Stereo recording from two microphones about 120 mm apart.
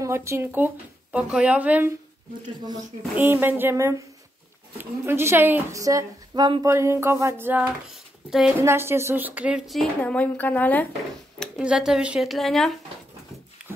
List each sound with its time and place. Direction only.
0.0 s a woman's voice: 25° right (ahead or behind)
3.2 s a woman's voice: 15° right (ahead or behind); by 6.7 s 35° right (ahead or behind)
6.7 s a woman's voice: 25° right (ahead or behind)
8.3 s speech: 5° right (ahead or behind)
8.5 s speech: 20° right (ahead or behind)
9.7 s speech: 5° left (ahead or behind)
11.3 s speech: 5° right (ahead or behind)